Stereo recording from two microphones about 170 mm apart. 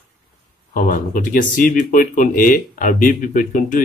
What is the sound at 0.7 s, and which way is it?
Speech, 50° left (ahead or behind).